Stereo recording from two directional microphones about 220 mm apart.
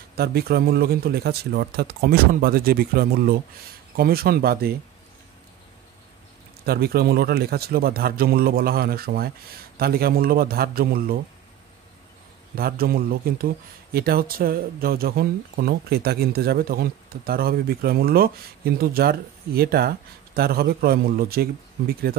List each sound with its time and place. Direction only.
0.1 s speech: 45° right (ahead or behind)
6.6 s speech: 45° right (ahead or behind)
12.5 s speech: 45° right (ahead or behind)